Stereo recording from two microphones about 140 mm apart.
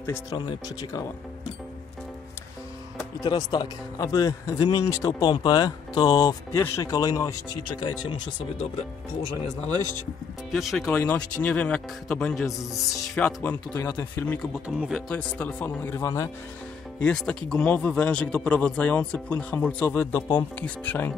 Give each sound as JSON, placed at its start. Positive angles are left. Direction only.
{"t": 0.0, "sound": "a man's voice", "side_deg": 20}
{"t": 3.3, "sound": "a man's voice", "side_deg": 30}
{"t": 10.5, "sound": "speech", "side_deg": 0}
{"t": 10.9, "sound": "a man's voice", "side_deg": 10}
{"t": 14.4, "sound": "a man's voice", "side_deg": 0}
{"t": 17.0, "sound": "a man's voice", "side_deg": 5}